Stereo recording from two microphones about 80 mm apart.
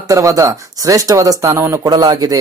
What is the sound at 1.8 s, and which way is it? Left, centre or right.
Speech, right.